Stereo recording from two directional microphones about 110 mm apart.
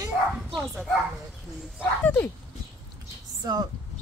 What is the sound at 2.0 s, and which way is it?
Speech, 15° left (ahead or behind).